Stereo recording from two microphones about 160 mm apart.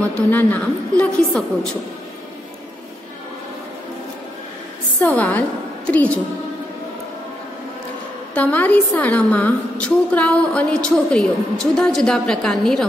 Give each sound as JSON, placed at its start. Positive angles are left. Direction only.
{"t": 0.0, "sound": "a woman's voice", "side_deg": 10}
{"t": 5.0, "sound": "a woman's voice", "side_deg": 10}
{"t": 8.4, "sound": "a woman's voice", "side_deg": 10}